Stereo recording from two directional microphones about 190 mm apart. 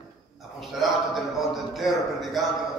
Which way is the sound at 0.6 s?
Centre (ahead or behind).